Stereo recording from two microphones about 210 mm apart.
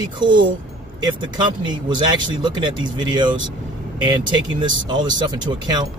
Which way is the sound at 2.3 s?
20° right (ahead or behind).